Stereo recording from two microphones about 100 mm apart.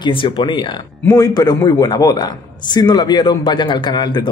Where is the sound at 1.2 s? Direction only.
40° left (ahead or behind).